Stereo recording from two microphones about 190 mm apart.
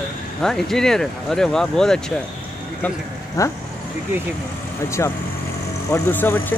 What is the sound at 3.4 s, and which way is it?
Speech, 15° left (ahead or behind).